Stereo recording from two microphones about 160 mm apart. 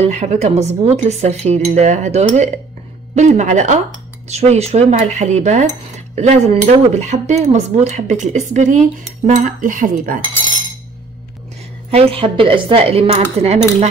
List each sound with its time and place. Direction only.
0.0 s speech: 45° right (ahead or behind)
11.9 s speech: 35° right (ahead or behind)